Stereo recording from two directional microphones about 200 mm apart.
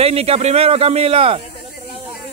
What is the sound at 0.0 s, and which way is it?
Speech, 30° right (ahead or behind).